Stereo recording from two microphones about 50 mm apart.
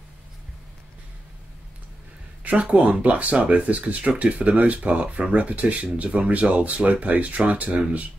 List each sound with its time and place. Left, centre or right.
2.4 s speech: right